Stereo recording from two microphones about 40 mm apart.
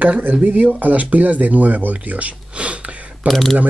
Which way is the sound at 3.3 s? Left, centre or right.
Centre.